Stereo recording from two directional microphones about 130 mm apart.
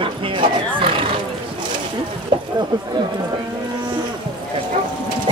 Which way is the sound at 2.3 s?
40° right (ahead or behind).